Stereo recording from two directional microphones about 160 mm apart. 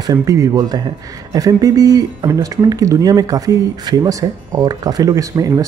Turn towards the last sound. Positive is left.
turn(degrees=-20)  # may be behind; listen again after turning